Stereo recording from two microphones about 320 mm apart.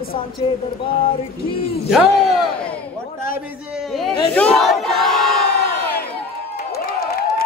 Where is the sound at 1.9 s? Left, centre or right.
Centre.